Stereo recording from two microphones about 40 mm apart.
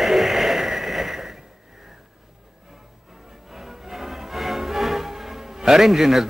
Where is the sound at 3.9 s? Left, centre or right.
Centre.